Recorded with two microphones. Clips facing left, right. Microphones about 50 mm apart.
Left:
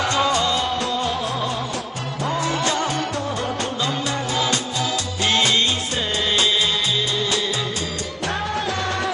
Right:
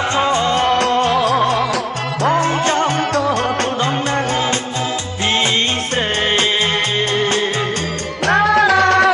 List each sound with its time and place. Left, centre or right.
0.1 s music: right
0.6 s music: right
2.4 s music: right
8.3 s music: right